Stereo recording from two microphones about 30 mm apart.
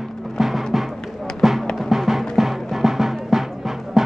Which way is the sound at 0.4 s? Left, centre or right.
Centre.